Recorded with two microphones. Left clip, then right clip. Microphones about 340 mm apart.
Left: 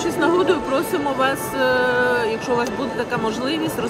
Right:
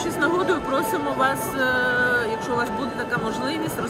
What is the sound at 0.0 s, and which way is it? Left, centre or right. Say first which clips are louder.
Speech: left 4 dB; centre.